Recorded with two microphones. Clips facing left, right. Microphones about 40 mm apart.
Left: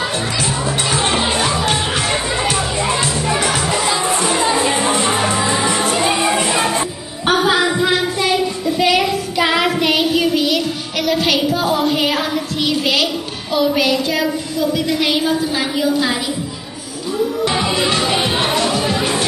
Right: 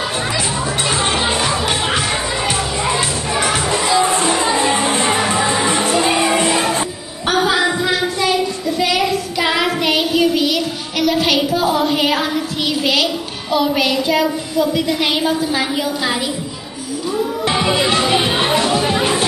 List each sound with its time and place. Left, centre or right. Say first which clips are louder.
1.4 s music: left 1 dB; centre
3.9 s music: right 2 dB; right
8.7 s child singing: left 2 dB; centre
12.8 s a sound: even; centre
14.9 s a woman's voice: even; centre
17.6 s music: right 2 dB; centre